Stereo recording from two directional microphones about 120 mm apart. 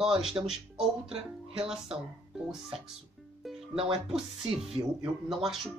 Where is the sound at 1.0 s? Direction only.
55° right (ahead or behind).